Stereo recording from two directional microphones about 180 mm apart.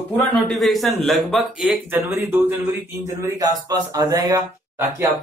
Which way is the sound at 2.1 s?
10° right (ahead or behind).